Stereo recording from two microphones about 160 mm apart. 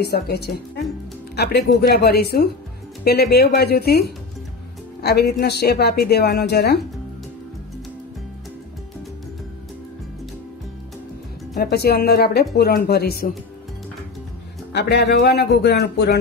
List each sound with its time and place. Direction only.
0.0 s a woman's voice: 90° left
5.0 s a woman's voice: 80° left
11.5 s speech: 70° left (ahead or behind)
14.7 s speech: 90° left